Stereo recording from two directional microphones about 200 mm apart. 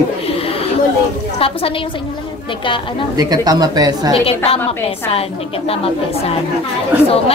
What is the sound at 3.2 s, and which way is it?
Speech, 20° right (ahead or behind).